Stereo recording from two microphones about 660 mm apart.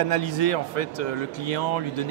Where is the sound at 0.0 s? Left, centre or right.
Left.